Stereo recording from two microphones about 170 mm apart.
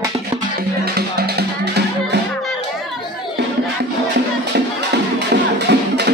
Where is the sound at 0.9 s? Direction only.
70° right (ahead or behind).